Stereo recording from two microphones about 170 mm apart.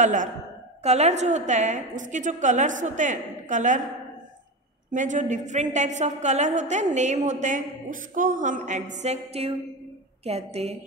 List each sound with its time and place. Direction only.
0.0 s a woman's voice: 50° right (ahead or behind)
4.9 s a woman's voice: 45° right (ahead or behind)